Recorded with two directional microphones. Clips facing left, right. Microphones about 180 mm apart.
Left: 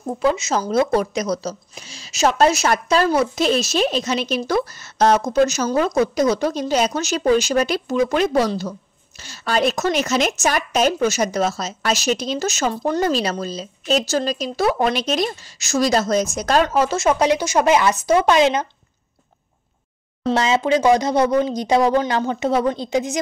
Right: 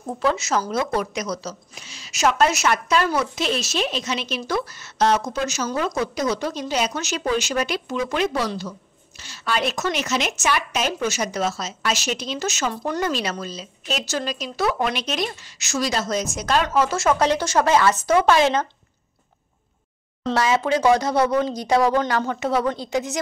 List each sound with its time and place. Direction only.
0.2 s speech: 20° left (ahead or behind)
0.6 s a woman's voice: 30° left (ahead or behind)
16.9 s speech: 20° left (ahead or behind)
20.3 s speech: 20° left (ahead or behind)